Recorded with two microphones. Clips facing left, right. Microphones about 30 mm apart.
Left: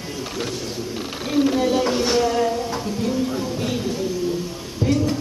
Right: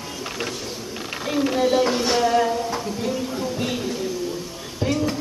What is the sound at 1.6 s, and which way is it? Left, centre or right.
Speech, centre.